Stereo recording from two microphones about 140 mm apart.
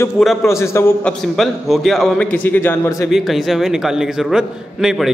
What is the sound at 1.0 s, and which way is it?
A man's voice, centre (ahead or behind).